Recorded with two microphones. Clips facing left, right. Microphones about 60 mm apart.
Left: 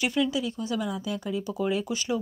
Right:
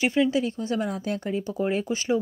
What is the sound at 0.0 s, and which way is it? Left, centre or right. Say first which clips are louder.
Speech: right 4 dB; right.